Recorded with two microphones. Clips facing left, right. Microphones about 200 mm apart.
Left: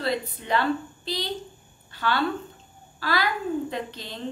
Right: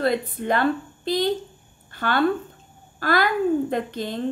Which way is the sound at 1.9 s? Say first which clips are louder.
Right 3 dB; 50° right (ahead or behind).